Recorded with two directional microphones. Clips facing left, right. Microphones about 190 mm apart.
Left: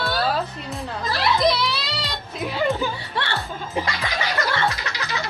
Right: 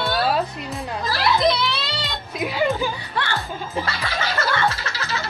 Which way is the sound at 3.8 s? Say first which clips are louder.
Left 1 dB; 15° left (ahead or behind).